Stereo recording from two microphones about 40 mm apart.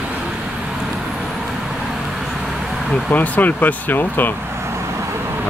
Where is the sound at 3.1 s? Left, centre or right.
Left.